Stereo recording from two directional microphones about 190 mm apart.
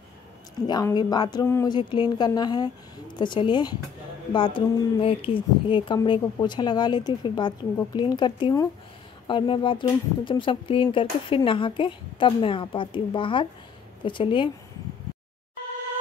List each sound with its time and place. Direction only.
0.6 s speech: 20° left (ahead or behind)